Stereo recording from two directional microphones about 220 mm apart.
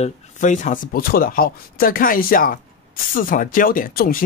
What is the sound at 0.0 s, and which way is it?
Speech, 35° left (ahead or behind).